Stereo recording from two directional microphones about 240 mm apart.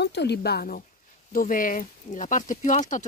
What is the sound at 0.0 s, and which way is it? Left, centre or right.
Speech, left.